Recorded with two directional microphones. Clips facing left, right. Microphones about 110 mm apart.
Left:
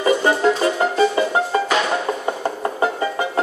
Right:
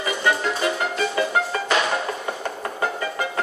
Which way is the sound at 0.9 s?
25° left (ahead or behind).